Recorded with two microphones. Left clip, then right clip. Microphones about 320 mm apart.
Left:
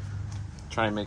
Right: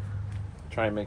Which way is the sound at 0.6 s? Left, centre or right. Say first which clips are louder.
Left 1 dB; centre.